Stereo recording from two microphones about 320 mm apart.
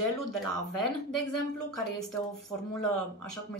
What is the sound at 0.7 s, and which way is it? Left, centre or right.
Speech, left.